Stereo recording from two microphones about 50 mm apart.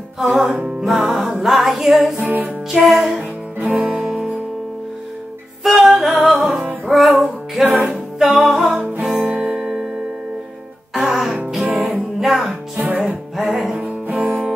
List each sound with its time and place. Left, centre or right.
0.2 s music: centre
3.8 s music: centre
5.6 s music: centre
11.0 s music: centre
12.7 s music: right
13.0 s music: centre